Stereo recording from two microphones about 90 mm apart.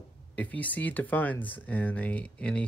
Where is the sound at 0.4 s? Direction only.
15° left (ahead or behind).